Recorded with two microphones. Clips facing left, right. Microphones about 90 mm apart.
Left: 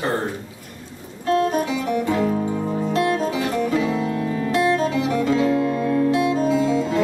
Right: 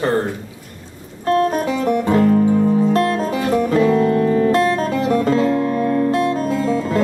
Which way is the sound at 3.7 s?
50° right (ahead or behind).